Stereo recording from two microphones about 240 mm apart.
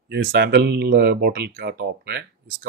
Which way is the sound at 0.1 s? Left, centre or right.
Right.